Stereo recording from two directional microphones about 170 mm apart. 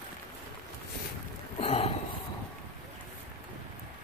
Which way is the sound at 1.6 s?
40° left (ahead or behind).